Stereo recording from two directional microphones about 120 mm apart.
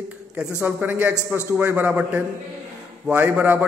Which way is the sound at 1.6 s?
15° right (ahead or behind).